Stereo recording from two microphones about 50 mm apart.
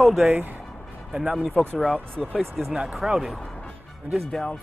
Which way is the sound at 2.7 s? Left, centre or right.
Centre.